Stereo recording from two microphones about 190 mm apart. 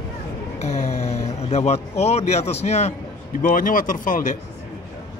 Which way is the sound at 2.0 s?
35° left (ahead or behind).